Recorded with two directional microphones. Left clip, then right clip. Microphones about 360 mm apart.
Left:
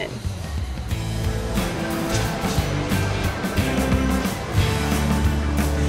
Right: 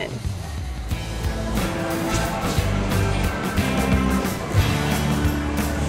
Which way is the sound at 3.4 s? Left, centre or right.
Centre.